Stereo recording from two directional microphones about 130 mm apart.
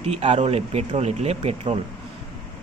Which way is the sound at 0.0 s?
50° right (ahead or behind).